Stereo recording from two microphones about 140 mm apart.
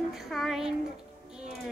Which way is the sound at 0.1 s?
Centre (ahead or behind).